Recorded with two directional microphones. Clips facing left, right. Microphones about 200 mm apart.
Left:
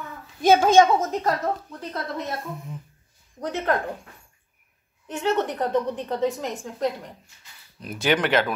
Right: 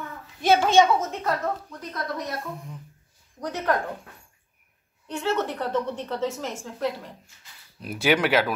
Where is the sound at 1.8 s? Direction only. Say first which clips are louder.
Left 1 dB; 25° left (ahead or behind).